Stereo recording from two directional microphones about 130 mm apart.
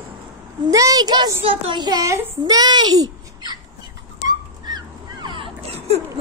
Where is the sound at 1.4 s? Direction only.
45° right (ahead or behind).